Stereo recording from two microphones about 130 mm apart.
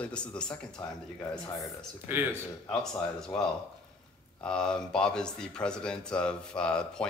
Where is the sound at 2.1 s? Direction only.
15° right (ahead or behind).